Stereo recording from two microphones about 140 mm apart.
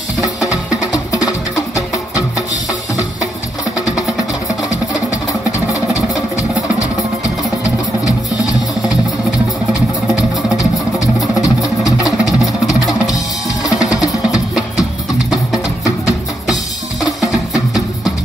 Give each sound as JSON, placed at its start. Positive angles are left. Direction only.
{"t": 0.9, "sound": "music", "side_deg": 25}
{"t": 10.1, "sound": "music", "side_deg": -5}
{"t": 11.4, "sound": "music", "side_deg": 25}
{"t": 13.7, "sound": "music", "side_deg": -5}